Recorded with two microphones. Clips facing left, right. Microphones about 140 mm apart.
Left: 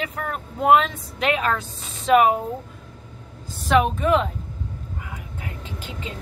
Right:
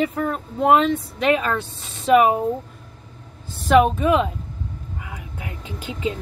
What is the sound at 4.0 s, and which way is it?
Speech, 5° right (ahead or behind).